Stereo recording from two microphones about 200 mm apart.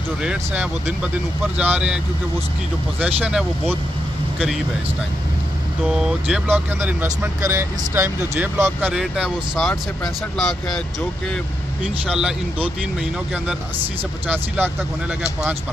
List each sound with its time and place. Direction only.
0.2 s speech: 5° right (ahead or behind)
3.2 s speech: 5° right (ahead or behind)
5.9 s speech: 5° right (ahead or behind)
12.1 s speech: 5° right (ahead or behind)
14.2 s speech: 10° right (ahead or behind)